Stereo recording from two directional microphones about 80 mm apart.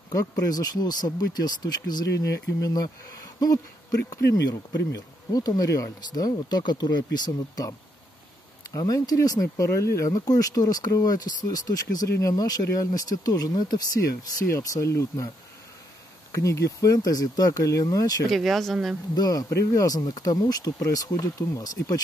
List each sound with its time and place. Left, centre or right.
0.1 s speech: left
4.1 s speech: left
8.7 s speech: left
14.5 s speech: left
16.4 s speech: left
18.3 s speech: centre
19.1 s speech: left